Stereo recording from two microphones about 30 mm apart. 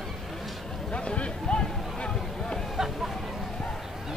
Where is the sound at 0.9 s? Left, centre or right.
Left.